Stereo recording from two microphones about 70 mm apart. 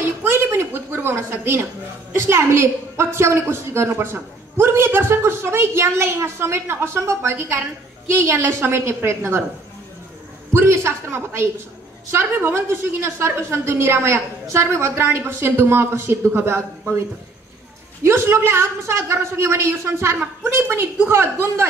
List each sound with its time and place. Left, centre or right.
0.2 s a sound: right
1.1 s a woman's voice: right
10.5 s a woman's voice: right
18.0 s a woman's voice: right